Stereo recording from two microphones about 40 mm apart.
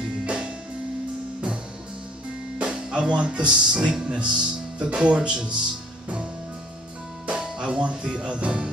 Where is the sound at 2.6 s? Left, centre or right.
Right.